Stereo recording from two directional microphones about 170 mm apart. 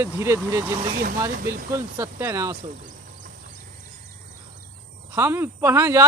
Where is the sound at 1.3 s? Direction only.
60° right (ahead or behind).